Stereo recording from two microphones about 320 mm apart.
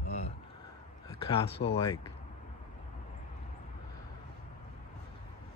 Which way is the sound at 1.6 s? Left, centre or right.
Left.